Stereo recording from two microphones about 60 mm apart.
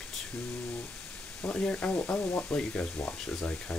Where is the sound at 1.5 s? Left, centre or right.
Centre.